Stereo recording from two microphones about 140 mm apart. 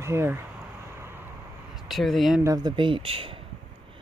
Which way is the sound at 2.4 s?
25° right (ahead or behind).